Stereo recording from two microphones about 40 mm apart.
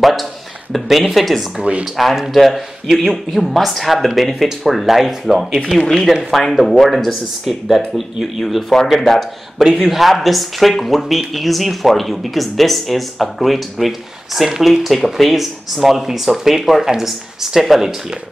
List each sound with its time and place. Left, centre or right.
0.0 s speech: centre
1.6 s speech: right
2.3 s speech: centre
7.4 s a man's voice: centre